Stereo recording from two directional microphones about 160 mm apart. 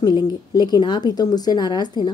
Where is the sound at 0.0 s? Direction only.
25° left (ahead or behind).